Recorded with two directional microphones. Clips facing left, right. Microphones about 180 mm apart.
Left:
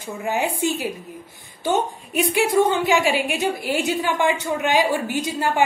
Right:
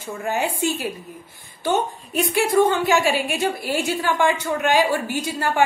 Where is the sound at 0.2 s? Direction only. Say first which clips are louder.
Left 1 dB; 15° left (ahead or behind).